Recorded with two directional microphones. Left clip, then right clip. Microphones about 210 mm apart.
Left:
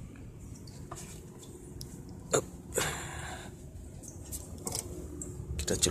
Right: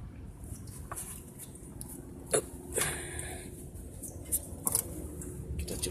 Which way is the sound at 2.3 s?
25° left (ahead or behind).